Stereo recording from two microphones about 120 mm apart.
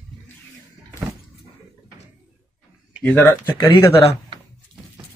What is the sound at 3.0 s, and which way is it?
Speech, 15° left (ahead or behind).